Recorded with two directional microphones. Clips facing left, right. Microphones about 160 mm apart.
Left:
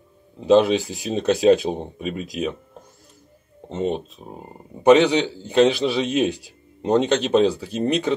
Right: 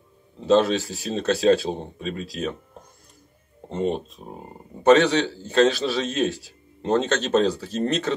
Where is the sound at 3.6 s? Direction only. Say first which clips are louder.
Left 1 dB; centre (ahead or behind).